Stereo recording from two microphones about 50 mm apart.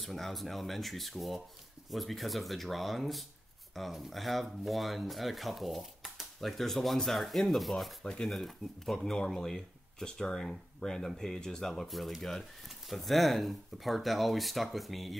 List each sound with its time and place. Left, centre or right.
0.0 s speech: centre
8.0 s speech: centre
8.3 s speech: centre